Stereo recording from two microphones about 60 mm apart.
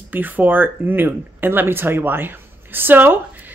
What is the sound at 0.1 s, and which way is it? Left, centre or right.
Speech, right.